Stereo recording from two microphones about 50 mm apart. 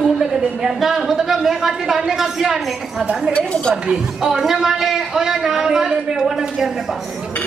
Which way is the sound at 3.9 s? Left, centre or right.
Centre.